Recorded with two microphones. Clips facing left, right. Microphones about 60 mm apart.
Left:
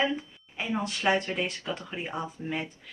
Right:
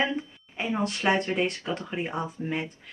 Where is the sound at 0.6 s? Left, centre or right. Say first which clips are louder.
Right 2 dB; centre.